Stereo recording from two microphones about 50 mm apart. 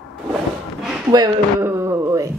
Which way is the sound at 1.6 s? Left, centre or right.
Right.